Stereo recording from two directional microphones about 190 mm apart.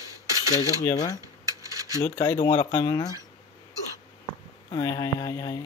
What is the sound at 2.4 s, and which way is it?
Speech, 10° left (ahead or behind).